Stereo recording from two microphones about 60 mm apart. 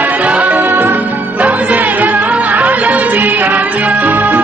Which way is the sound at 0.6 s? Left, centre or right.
Right.